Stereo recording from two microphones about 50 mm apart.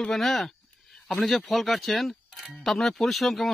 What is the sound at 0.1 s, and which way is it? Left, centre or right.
Speech, centre.